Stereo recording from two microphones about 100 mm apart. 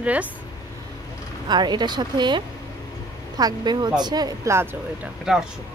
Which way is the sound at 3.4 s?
45° right (ahead or behind).